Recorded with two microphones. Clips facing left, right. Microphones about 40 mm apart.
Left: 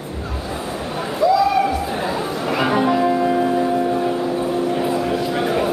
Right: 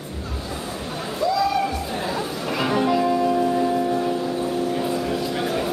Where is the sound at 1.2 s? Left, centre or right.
Centre.